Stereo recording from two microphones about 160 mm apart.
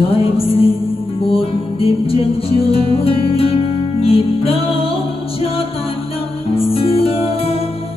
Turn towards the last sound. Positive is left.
turn(degrees=35)  # may be behind; listen again after turning